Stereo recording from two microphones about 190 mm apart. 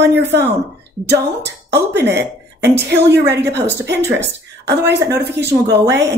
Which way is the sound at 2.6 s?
60° right (ahead or behind).